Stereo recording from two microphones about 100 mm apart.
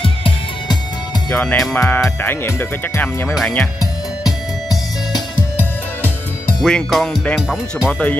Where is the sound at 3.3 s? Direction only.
5° left (ahead or behind).